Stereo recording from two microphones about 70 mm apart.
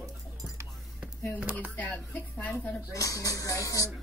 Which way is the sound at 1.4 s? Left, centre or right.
Right.